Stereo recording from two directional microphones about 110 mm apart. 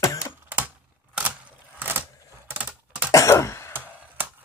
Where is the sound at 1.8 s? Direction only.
15° right (ahead or behind).